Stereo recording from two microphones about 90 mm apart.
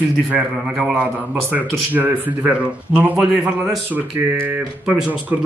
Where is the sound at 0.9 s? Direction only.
20° right (ahead or behind).